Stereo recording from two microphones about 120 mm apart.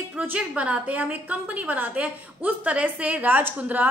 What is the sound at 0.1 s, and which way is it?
A woman's voice, 10° right (ahead or behind).